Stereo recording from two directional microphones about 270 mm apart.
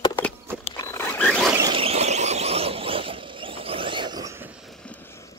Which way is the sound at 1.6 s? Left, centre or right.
Centre.